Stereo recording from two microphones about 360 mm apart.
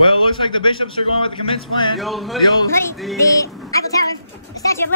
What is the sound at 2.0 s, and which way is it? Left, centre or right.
Speech, centre.